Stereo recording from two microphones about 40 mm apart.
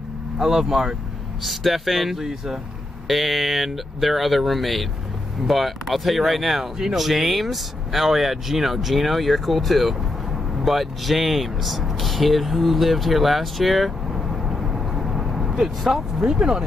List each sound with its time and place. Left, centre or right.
0.4 s speech: centre
16.3 s speech: centre